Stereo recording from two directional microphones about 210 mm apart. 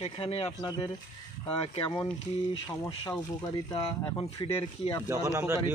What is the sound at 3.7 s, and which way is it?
Speech, 25° left (ahead or behind).